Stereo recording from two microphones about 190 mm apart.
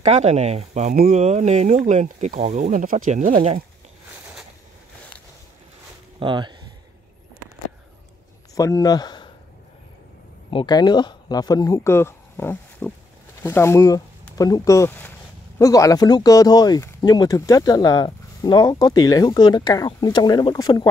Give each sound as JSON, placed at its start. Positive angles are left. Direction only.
{"t": 0.0, "sound": "speech", "side_deg": -35}
{"t": 6.1, "sound": "speech", "side_deg": -25}
{"t": 8.5, "sound": "speech", "side_deg": 20}
{"t": 10.5, "sound": "speech", "side_deg": 25}